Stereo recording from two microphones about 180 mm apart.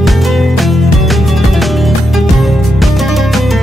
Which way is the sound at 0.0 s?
Centre (ahead or behind).